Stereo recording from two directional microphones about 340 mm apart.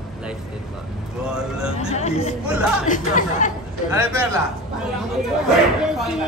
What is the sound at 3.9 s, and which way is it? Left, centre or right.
Speech, centre.